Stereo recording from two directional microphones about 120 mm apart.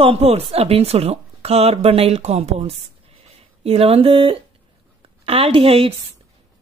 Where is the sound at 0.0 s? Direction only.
55° right (ahead or behind).